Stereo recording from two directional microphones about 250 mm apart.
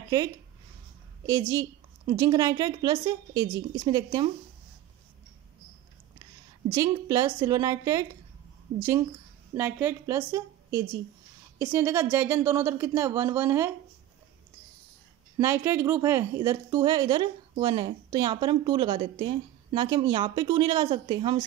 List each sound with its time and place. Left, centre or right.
1.2 s a woman's voice: centre
6.7 s a woman's voice: centre
9.6 s a woman's voice: centre
15.3 s a woman's voice: centre